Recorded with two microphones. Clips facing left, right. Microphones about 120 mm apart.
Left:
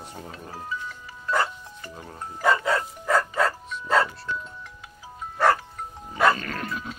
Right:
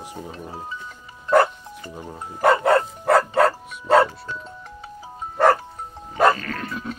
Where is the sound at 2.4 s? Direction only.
60° right (ahead or behind).